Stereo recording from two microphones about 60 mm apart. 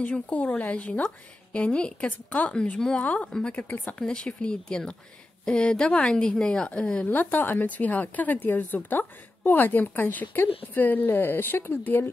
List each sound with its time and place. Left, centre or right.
0.0 s a woman's voice: left
7.1 s speech: left